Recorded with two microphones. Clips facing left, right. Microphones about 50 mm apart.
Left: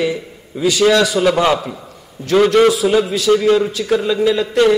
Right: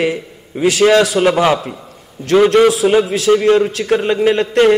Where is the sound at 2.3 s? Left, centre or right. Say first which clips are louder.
Right 2 dB; centre.